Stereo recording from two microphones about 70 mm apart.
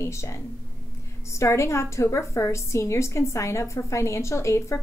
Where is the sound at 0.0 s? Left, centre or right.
Left.